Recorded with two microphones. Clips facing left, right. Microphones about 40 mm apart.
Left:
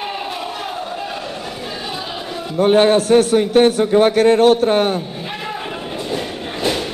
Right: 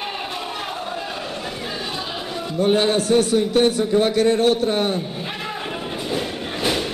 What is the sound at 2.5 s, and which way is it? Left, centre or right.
A man's voice, left.